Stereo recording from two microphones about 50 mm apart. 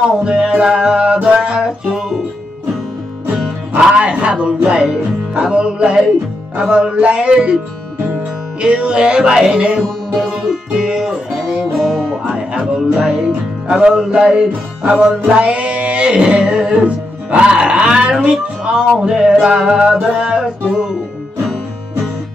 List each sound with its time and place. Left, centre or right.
0.1 s music: centre
4.1 s a sound: centre
5.3 s music: centre
8.5 s music: centre
13.3 s music: centre
14.9 s singing: centre
16.8 s speech: right
18.2 s music: centre